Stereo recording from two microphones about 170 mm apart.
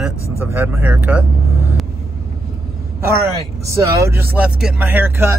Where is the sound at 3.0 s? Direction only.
15° right (ahead or behind).